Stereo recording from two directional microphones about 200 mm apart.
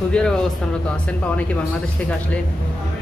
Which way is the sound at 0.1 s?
5° left (ahead or behind).